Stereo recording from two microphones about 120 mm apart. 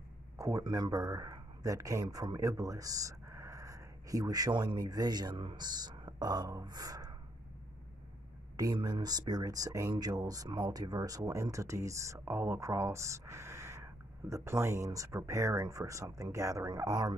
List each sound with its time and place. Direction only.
0.4 s speech: 25° right (ahead or behind)
0.7 s speech: 35° right (ahead or behind)
8.5 s speech: 35° right (ahead or behind)